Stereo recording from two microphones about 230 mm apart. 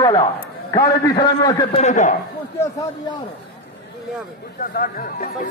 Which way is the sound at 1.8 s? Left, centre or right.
Left.